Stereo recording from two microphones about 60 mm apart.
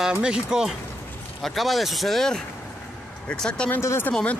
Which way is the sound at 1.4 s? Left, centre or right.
Centre.